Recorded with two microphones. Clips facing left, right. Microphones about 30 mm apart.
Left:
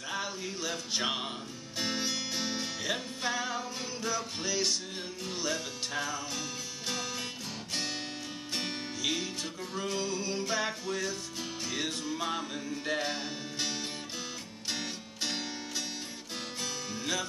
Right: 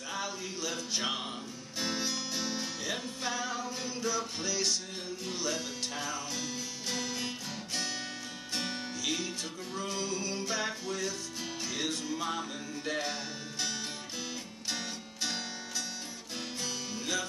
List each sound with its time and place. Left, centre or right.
0.1 s music: centre
8.5 s music: centre
16.6 s music: centre